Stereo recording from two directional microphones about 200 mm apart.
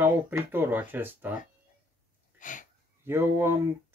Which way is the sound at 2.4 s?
40° left (ahead or behind).